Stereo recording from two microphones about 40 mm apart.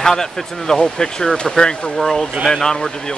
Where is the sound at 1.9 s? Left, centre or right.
Centre.